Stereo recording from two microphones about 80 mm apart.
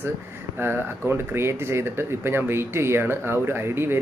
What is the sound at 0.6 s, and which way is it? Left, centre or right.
Speech, right.